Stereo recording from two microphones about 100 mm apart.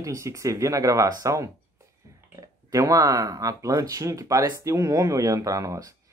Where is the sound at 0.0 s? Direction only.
35° right (ahead or behind).